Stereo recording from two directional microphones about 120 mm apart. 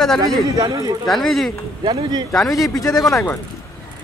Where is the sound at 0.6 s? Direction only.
35° right (ahead or behind).